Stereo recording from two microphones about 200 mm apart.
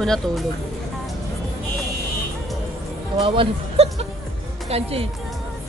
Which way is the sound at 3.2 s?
25° right (ahead or behind).